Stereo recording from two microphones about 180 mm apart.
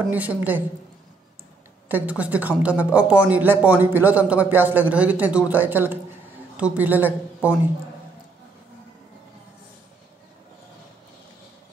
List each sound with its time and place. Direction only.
0.1 s speech: 10° right (ahead or behind)
1.9 s speech: 10° right (ahead or behind)